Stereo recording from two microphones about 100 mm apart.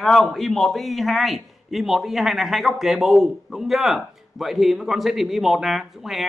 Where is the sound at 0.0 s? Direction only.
5° left (ahead or behind).